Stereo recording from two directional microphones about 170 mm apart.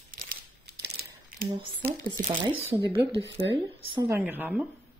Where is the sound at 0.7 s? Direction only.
65° right (ahead or behind).